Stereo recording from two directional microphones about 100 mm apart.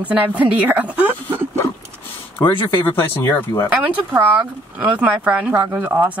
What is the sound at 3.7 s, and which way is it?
Speech, 15° right (ahead or behind).